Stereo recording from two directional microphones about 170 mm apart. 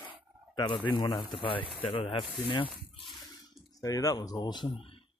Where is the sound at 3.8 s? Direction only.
20° left (ahead or behind).